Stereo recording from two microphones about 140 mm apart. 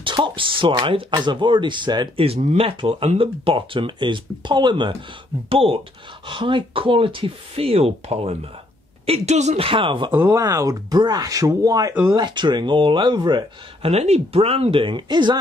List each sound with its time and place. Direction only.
0.0 s speech: 35° right (ahead or behind)
10.1 s speech: 20° right (ahead or behind)
11.9 s speech: 15° right (ahead or behind)
12.2 s speech: 35° right (ahead or behind)
13.8 s speech: 50° right (ahead or behind); by 15.3 s 35° right (ahead or behind)